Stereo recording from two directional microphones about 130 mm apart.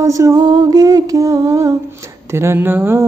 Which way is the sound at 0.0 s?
25° right (ahead or behind).